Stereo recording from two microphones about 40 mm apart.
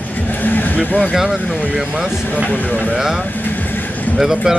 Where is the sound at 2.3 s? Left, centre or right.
Left.